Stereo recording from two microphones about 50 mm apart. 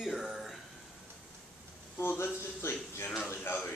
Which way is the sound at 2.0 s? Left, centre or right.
Left.